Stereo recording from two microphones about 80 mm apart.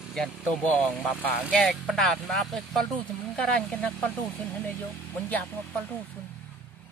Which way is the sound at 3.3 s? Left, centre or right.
Centre.